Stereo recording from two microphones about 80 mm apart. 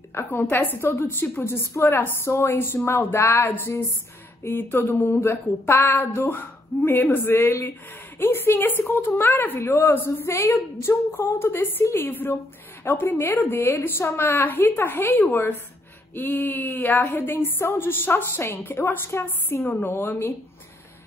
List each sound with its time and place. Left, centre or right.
0.1 s a woman's voice: left